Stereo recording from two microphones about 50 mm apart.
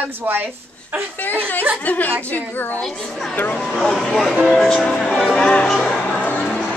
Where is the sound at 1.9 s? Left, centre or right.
Left.